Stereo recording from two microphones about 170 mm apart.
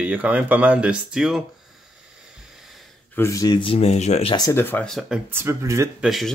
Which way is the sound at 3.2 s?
20° left (ahead or behind).